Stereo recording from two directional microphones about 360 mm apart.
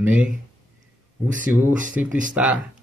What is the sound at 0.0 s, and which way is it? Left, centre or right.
Speech, centre.